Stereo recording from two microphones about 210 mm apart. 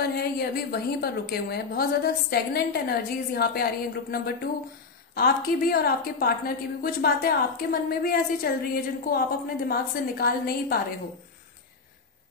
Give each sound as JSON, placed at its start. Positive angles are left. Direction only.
{"t": 0.0, "sound": "a woman's voice", "side_deg": 50}